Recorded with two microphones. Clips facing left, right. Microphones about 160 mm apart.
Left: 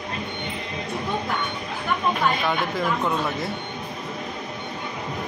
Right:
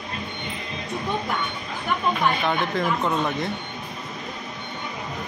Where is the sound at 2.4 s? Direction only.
5° left (ahead or behind).